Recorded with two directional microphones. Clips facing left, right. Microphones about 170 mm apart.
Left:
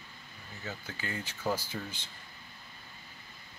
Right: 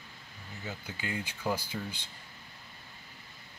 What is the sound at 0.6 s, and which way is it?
Speech, 15° right (ahead or behind).